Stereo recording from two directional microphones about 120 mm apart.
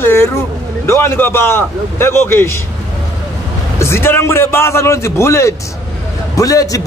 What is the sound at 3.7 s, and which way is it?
A man's voice, 20° left (ahead or behind).